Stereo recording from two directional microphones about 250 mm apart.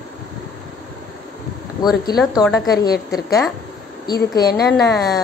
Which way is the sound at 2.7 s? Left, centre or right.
Left.